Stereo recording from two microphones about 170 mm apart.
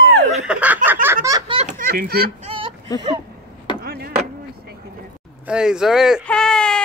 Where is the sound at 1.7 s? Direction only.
55° right (ahead or behind).